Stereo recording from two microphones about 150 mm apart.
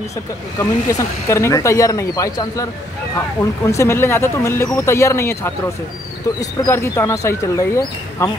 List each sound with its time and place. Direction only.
0.6 s speech: 20° left (ahead or behind)